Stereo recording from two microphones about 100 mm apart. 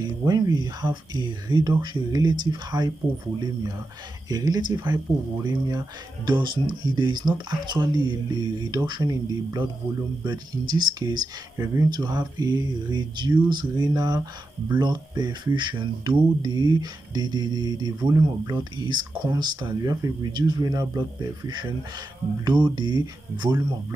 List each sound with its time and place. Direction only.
0.0 s speech: 40° right (ahead or behind)
1.1 s speech: 45° right (ahead or behind)
4.7 s speech: 25° right (ahead or behind)
5.4 s speech: 35° right (ahead or behind)
11.5 s speech: 30° right (ahead or behind)
11.9 s speech: 45° right (ahead or behind)
13.7 s speech: 35° right (ahead or behind)